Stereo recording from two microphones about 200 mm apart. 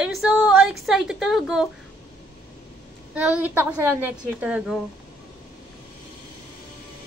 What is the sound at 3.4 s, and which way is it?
A woman's voice, 10° right (ahead or behind).